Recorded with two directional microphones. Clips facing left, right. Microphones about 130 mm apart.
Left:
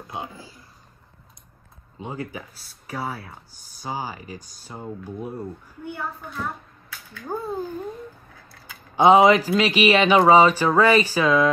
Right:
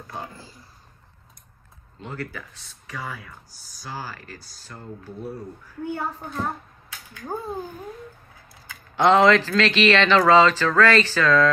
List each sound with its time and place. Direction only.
0.1 s speech: 15° left (ahead or behind)
2.0 s speech: 15° left (ahead or behind)
5.9 s a child's voice: 40° right (ahead or behind)
7.2 s speech: 15° right (ahead or behind)
8.9 s speech: 10° left (ahead or behind)